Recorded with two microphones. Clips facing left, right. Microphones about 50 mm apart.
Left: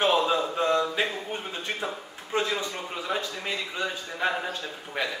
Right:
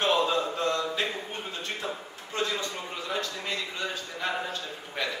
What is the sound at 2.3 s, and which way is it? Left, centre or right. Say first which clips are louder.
A man's voice: left 3 dB; centre.